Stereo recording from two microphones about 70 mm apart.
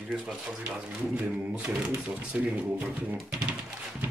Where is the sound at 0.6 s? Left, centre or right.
Right.